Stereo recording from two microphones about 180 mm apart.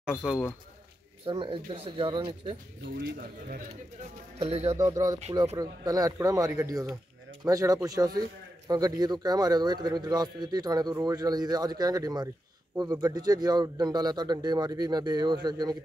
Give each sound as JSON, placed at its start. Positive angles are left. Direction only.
{"t": 0.0, "sound": "speech", "side_deg": -5}
{"t": 1.2, "sound": "a man's voice", "side_deg": -30}
{"t": 3.0, "sound": "speech", "side_deg": -50}
{"t": 4.4, "sound": "speech", "side_deg": -35}
{"t": 4.9, "sound": "a man's voice", "side_deg": -20}